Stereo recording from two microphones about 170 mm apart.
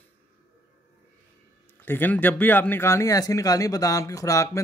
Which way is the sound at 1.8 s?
10° left (ahead or behind).